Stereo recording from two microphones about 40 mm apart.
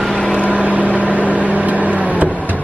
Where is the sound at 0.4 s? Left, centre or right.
Right.